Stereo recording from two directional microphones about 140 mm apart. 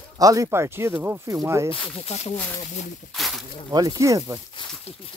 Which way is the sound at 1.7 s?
45° left (ahead or behind).